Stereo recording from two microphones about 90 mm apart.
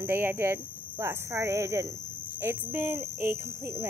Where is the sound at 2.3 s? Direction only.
25° right (ahead or behind).